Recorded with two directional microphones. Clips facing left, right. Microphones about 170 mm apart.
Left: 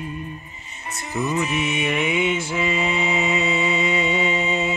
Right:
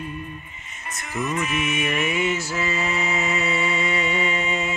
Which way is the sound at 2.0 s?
15° left (ahead or behind).